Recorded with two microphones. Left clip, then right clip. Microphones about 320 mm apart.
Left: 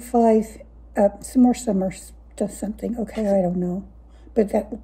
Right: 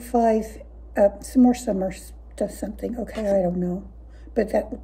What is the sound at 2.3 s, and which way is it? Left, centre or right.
A woman's voice, centre.